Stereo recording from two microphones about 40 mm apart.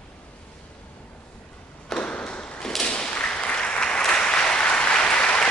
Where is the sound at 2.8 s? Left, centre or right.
Left.